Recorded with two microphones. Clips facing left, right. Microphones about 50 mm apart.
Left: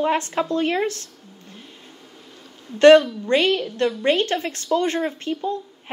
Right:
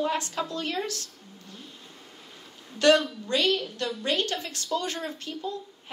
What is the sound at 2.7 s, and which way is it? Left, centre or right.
A woman's voice, left.